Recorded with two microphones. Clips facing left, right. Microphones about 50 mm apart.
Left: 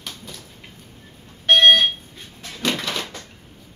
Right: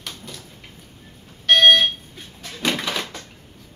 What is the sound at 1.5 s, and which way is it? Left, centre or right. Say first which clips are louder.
Fire alarm: even; left.